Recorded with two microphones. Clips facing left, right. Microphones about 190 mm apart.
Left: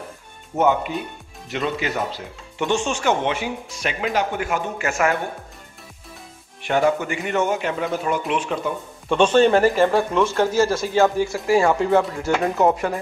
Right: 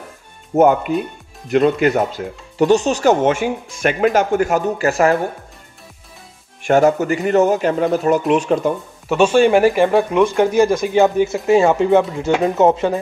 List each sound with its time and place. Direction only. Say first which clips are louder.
0.6 s speech: right 6 dB; 50° right (ahead or behind)
2.6 s speech: right 8 dB; 40° right (ahead or behind)
6.6 s speech: right 6 dB; 45° right (ahead or behind)
9.1 s speech: right 3 dB; 10° right (ahead or behind)